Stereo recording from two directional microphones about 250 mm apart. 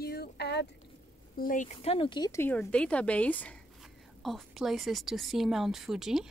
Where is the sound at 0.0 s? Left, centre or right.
Left.